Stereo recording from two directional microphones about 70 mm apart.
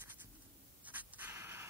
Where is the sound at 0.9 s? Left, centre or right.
Right.